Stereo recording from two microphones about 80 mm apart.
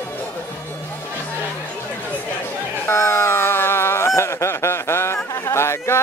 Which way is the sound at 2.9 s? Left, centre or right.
Left.